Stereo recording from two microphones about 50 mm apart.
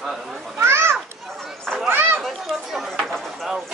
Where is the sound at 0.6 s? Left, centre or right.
Right.